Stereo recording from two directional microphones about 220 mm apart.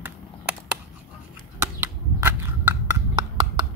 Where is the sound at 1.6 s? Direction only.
10° right (ahead or behind).